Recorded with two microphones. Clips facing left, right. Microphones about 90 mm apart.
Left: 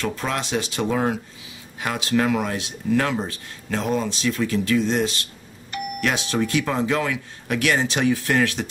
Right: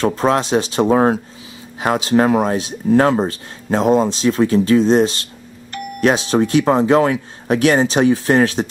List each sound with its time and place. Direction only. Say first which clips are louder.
0.0 s speech: right 10 dB; 35° right (ahead or behind)